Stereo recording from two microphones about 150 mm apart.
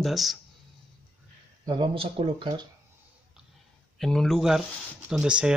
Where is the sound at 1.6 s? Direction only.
30° right (ahead or behind).